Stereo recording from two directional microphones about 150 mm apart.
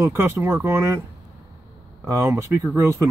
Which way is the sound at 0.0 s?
20° right (ahead or behind).